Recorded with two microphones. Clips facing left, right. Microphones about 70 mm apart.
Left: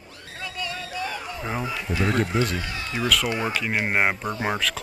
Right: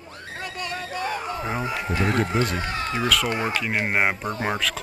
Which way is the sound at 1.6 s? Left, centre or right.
Right.